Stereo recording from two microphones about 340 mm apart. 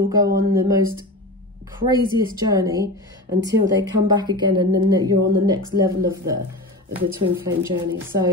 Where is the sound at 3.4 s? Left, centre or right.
Right.